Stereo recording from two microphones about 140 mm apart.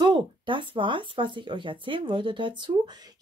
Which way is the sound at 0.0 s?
35° right (ahead or behind).